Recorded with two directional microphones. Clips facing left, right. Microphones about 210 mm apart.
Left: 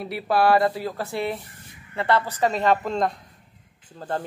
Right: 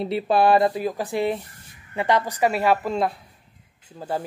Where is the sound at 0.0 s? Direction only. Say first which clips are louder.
Right 2 dB; 20° right (ahead or behind).